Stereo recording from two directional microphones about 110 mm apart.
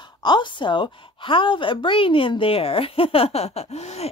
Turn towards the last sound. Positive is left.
turn(degrees=75)  # may be behind; listen again after turning